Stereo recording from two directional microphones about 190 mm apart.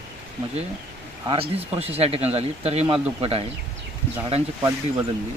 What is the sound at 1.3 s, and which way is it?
Speech, 30° right (ahead or behind).